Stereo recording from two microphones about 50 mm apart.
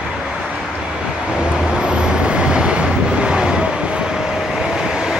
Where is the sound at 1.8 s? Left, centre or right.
Centre.